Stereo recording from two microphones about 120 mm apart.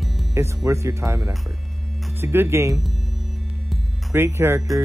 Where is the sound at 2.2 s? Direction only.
20° right (ahead or behind).